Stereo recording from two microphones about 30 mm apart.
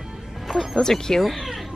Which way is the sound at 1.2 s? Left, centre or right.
Centre.